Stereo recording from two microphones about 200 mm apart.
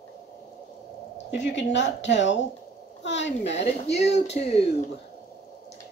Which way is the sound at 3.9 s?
35° left (ahead or behind).